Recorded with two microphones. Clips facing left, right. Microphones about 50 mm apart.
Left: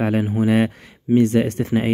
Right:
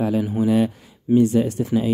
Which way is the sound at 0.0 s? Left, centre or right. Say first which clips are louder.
Left 1 dB; left.